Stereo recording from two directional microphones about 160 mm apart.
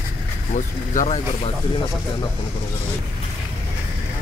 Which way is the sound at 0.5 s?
50° left (ahead or behind).